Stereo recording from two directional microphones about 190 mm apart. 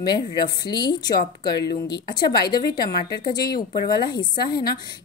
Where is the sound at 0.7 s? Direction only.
25° left (ahead or behind).